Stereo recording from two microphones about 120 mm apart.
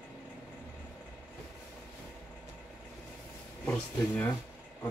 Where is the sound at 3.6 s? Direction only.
20° left (ahead or behind).